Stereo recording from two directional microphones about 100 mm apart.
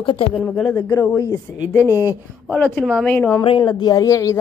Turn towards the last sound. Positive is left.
turn(degrees=30)  # may be behind; listen again after turning